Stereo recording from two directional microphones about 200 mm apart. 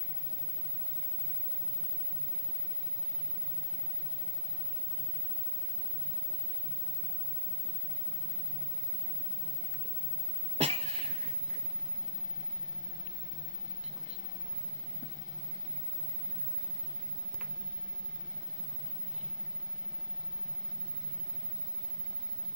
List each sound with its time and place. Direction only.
10.6 s cough: 30° right (ahead or behind)